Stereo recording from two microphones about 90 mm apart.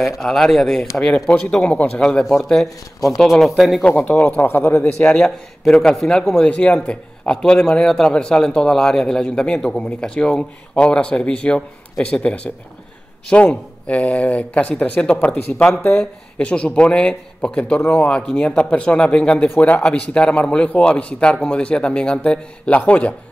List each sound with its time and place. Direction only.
0.0 s a man's voice: 5° left (ahead or behind)
3.9 s a man's voice: 15° left (ahead or behind)
4.5 s a man's voice: 25° left (ahead or behind)
5.1 s a man's voice: 5° left (ahead or behind)